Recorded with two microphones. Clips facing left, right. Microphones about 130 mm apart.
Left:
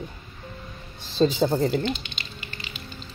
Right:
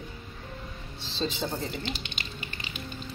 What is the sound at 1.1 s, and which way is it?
Speech, 45° left (ahead or behind).